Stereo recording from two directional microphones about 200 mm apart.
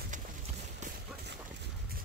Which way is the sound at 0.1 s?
40° right (ahead or behind).